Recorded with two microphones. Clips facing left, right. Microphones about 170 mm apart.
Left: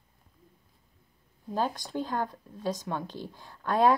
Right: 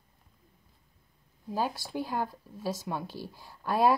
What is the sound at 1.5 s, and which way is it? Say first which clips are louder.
Speech: left 1 dB; 5° right (ahead or behind).